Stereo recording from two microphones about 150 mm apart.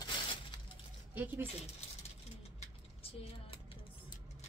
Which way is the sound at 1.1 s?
10° right (ahead or behind).